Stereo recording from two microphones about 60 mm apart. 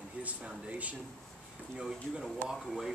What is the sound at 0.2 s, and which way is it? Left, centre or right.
Speech, right.